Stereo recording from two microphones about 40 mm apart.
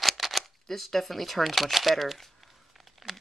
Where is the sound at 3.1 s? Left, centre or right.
Centre.